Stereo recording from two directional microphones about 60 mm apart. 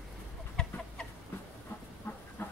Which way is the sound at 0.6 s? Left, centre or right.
Centre.